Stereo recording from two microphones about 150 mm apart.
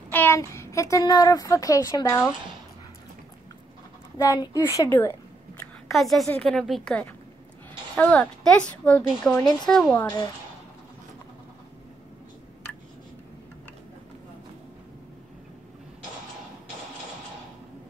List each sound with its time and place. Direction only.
0.1 s a child's voice: 15° left (ahead or behind)
4.2 s speech: 25° left (ahead or behind)
5.6 s a sound: centre (ahead or behind)
6.2 s a woman's voice: 10° left (ahead or behind)